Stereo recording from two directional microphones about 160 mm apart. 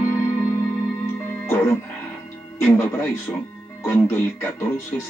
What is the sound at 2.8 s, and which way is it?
Speech, 15° left (ahead or behind).